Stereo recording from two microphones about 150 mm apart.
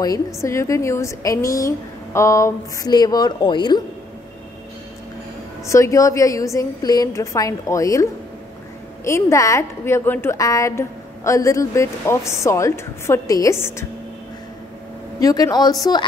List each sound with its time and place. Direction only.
0.0 s a woman's voice: 20° left (ahead or behind)
5.7 s a woman's voice: 20° left (ahead or behind)
15.1 s a woman's voice: 25° left (ahead or behind)